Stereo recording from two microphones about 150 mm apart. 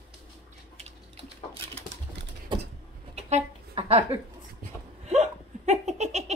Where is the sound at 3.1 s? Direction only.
45° right (ahead or behind).